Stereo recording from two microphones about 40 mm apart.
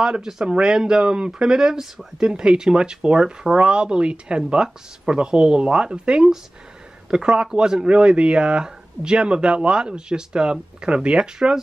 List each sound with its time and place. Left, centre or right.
0.0 s speech: centre